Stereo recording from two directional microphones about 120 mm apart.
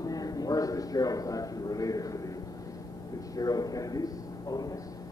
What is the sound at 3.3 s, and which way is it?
A man's voice, 30° left (ahead or behind).